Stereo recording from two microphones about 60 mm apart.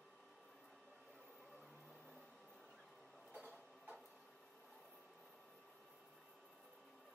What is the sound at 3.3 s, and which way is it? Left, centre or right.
Printer, centre.